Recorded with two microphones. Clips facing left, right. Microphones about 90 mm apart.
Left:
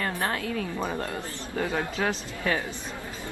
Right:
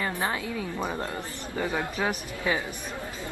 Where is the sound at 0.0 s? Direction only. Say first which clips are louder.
Even; 10° right (ahead or behind).